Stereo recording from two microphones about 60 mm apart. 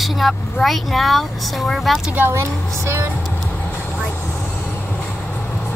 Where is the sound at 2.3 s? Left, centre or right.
Right.